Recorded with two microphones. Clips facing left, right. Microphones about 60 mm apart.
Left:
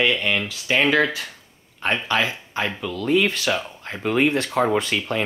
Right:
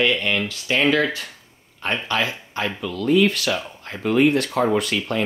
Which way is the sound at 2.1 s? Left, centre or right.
Left.